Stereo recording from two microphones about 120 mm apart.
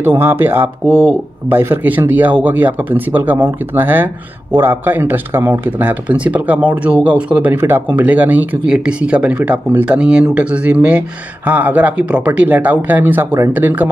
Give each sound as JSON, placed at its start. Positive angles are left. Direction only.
{"t": 0.0, "sound": "speech", "side_deg": -20}